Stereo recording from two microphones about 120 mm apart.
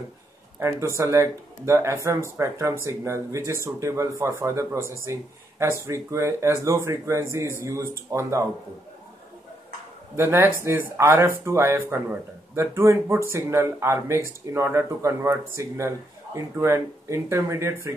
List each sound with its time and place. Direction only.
0.7 s speech: 25° right (ahead or behind)
10.1 s speech: 20° right (ahead or behind)